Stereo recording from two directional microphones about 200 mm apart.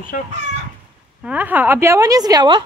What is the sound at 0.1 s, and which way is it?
Speech, 45° left (ahead or behind).